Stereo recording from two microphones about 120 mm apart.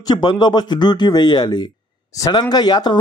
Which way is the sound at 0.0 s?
35° left (ahead or behind).